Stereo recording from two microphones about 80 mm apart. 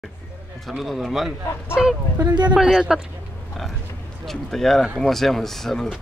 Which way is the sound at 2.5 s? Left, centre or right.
Centre.